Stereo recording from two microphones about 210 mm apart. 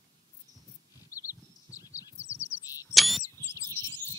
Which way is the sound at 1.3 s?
15° left (ahead or behind).